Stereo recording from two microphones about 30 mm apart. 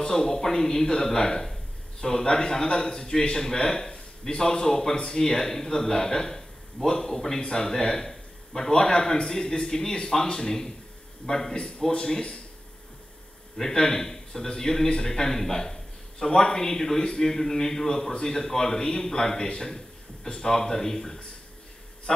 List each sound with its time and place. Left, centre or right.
0.1 s a man's voice: centre
4.9 s a man's voice: left
5.2 s a man's voice: centre
11.9 s speech: left
13.6 s a man's voice: centre